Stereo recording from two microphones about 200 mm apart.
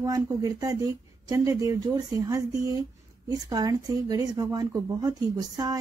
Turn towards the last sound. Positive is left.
turn(degrees=-20)  # may be behind; listen again after turning